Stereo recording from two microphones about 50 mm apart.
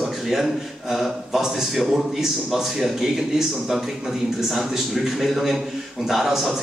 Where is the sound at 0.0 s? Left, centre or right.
Centre.